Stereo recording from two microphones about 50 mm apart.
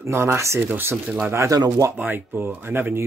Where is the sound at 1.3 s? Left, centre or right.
Right.